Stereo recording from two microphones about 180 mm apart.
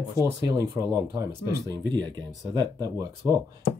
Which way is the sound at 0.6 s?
15° right (ahead or behind).